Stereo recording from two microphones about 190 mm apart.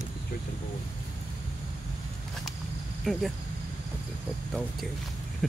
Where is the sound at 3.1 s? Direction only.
Centre (ahead or behind).